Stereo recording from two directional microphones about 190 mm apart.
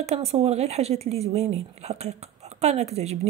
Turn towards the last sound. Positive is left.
turn(degrees=-35)  # may be behind; listen again after turning